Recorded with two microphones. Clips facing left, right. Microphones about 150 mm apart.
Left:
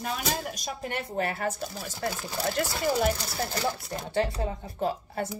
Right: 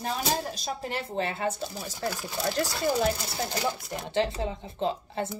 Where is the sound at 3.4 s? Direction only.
20° right (ahead or behind).